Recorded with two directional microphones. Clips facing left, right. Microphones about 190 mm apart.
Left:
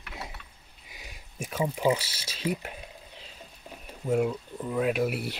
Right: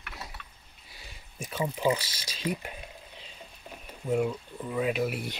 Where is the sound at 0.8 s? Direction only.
15° left (ahead or behind).